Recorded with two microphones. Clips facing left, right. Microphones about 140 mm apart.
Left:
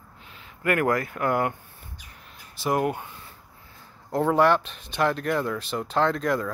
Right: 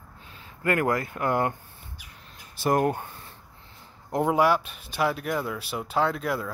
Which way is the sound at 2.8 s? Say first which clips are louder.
Right 1 dB; 35° right (ahead or behind).